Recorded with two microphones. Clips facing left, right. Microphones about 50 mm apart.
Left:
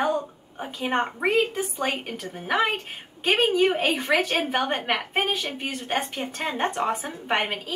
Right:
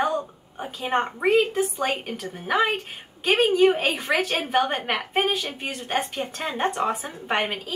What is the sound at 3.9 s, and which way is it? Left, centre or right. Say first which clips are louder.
Speech: left 1 dB; left.